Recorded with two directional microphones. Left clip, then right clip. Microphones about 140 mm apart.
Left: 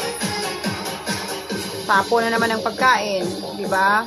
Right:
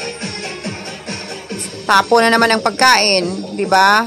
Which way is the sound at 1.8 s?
80° right.